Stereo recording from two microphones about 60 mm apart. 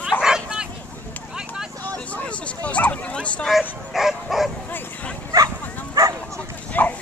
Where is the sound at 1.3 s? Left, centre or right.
Centre.